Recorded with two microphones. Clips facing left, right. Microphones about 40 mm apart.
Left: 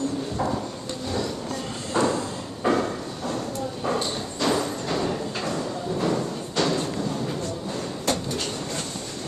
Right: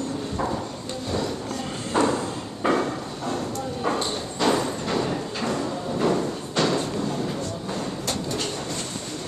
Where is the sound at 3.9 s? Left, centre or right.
Right.